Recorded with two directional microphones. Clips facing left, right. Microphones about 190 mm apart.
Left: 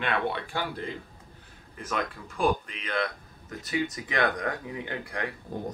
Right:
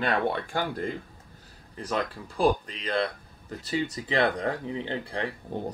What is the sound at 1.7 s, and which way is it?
Speech, 30° right (ahead or behind).